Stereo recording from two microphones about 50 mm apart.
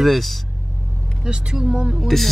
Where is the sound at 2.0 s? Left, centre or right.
Centre.